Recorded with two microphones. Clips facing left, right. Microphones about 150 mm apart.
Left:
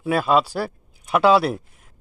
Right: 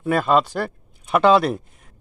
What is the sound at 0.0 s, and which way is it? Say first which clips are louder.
Speech: right 1 dB; 5° left (ahead or behind).